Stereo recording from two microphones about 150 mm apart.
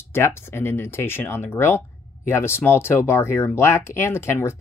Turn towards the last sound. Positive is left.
turn(degrees=15)  # may be behind; listen again after turning